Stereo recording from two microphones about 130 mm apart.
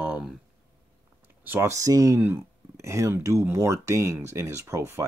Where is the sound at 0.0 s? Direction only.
10° right (ahead or behind).